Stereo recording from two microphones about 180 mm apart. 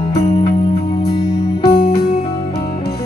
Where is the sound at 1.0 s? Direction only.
25° left (ahead or behind).